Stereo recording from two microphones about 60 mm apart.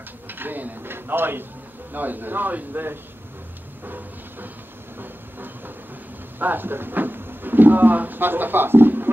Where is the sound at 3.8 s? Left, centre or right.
Right.